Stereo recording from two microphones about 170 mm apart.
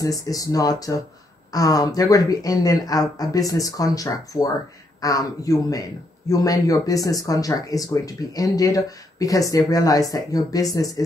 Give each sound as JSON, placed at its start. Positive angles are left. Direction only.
{"t": 0.0, "sound": "speech", "side_deg": 20}